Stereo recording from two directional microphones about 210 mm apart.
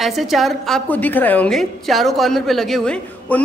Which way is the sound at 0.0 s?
Centre (ahead or behind).